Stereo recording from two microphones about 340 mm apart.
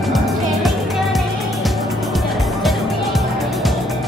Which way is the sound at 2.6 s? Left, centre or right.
Centre.